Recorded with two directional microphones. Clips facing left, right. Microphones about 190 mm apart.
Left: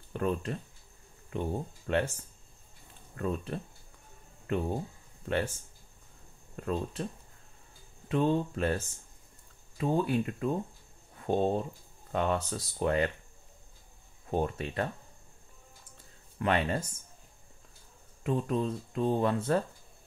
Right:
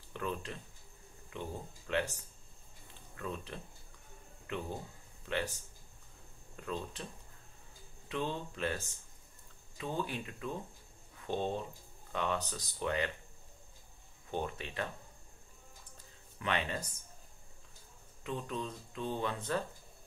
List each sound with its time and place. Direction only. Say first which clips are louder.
0.1 s speech: left 8 dB; 40° left (ahead or behind)
3.2 s speech: left 8 dB; 40° left (ahead or behind)
6.5 s speech: left 7 dB; 35° left (ahead or behind)
8.1 s speech: left 10 dB; 35° left (ahead or behind)
9.8 s speech: left 10 dB; 35° left (ahead or behind)
14.3 s speech: left 7 dB; 35° left (ahead or behind)
16.3 s speech: left 7 dB; 40° left (ahead or behind)
18.2 s speech: left 9 dB; 35° left (ahead or behind)